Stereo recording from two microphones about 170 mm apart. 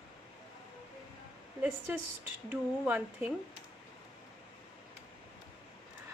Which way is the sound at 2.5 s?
10° right (ahead or behind).